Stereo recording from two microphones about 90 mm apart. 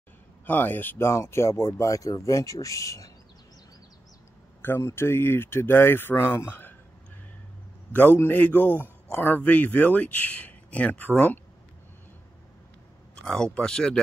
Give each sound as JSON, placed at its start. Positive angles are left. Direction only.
{"t": 0.5, "sound": "a man's voice", "side_deg": 20}
{"t": 4.6, "sound": "a man's voice", "side_deg": 25}
{"t": 7.9, "sound": "a man's voice", "side_deg": 20}
{"t": 13.1, "sound": "speech", "side_deg": 5}